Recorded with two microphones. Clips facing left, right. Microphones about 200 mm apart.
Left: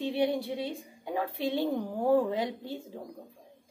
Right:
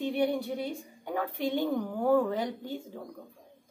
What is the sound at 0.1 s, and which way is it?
A woman's voice, 30° left (ahead or behind).